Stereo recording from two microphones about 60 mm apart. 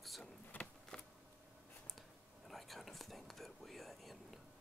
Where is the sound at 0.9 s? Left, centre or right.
Centre.